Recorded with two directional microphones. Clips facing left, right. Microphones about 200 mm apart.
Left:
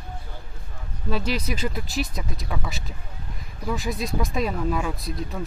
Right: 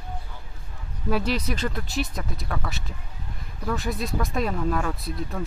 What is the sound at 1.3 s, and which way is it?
Speech, 5° left (ahead or behind).